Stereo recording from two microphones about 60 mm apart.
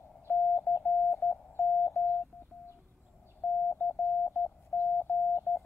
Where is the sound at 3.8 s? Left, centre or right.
Left.